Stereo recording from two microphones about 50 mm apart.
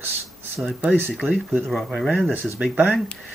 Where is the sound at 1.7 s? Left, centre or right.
Centre.